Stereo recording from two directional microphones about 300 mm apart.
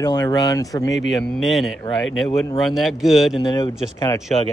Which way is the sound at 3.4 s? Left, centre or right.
Centre.